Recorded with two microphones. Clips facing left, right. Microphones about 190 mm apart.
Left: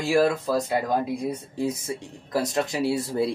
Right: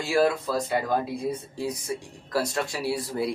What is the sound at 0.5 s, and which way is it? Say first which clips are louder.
Speech: left 2 dB; 15° left (ahead or behind).